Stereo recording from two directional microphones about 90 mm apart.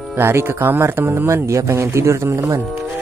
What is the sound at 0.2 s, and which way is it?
Speech, 25° right (ahead or behind).